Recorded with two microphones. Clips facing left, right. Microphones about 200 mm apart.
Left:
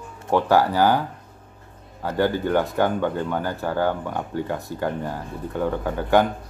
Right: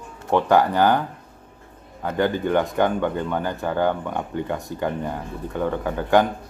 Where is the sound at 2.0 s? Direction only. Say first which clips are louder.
Even; 5° left (ahead or behind).